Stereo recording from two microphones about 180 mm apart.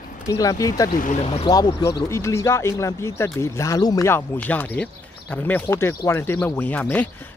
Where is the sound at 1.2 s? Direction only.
30° left (ahead or behind).